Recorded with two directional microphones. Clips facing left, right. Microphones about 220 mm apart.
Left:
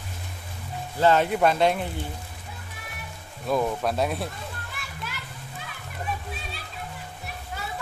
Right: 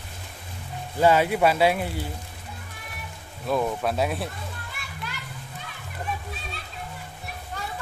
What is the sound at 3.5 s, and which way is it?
Speech, centre (ahead or behind).